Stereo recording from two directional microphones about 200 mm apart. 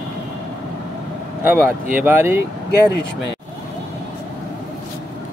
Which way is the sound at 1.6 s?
10° right (ahead or behind).